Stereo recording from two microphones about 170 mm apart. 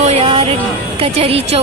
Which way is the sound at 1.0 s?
35° right (ahead or behind).